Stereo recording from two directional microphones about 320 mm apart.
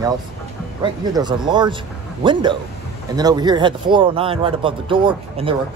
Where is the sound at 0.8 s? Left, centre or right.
Centre.